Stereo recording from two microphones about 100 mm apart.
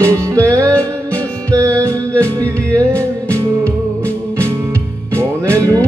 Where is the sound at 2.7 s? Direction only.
15° left (ahead or behind).